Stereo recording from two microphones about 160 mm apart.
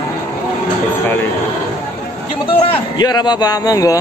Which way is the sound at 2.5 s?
25° left (ahead or behind).